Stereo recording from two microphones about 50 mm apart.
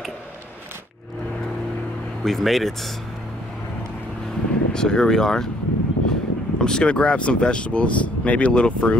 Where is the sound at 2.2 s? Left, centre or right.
Centre.